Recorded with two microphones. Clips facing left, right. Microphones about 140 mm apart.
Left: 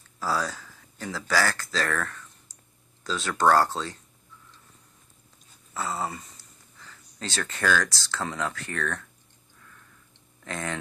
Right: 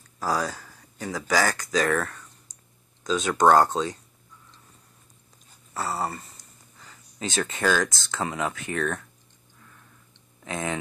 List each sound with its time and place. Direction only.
0.2 s speech: 15° right (ahead or behind)
5.8 s a sound: 10° right (ahead or behind)
6.8 s speech: 15° right (ahead or behind)
10.4 s speech: 15° right (ahead or behind)